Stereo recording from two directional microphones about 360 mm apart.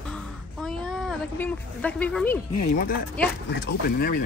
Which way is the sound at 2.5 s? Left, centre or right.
Left.